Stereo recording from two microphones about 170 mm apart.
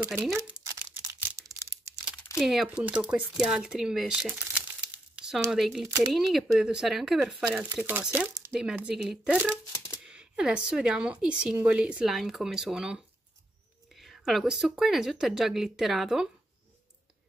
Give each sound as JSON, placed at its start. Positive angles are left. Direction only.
{"t": 0.0, "sound": "speech", "side_deg": -10}
{"t": 0.6, "sound": "crumpling", "side_deg": -20}
{"t": 2.3, "sound": "speech", "side_deg": 0}
{"t": 4.9, "sound": "crumpling", "side_deg": -5}
{"t": 5.5, "sound": "speech", "side_deg": 0}
{"t": 5.9, "sound": "speech", "side_deg": -20}
{"t": 6.1, "sound": "speech", "side_deg": 0}
{"t": 9.5, "sound": "a sound", "side_deg": 15}
{"t": 10.0, "sound": "speech", "side_deg": -5}